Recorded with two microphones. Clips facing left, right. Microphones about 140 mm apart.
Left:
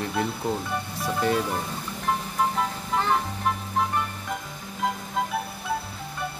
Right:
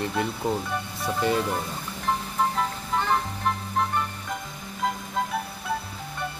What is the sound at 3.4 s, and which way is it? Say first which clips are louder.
Music: even; 5° left (ahead or behind).